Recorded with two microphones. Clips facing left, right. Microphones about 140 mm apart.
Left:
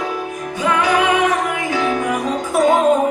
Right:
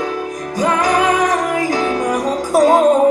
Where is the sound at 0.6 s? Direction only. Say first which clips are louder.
Right 1 dB; 40° right (ahead or behind).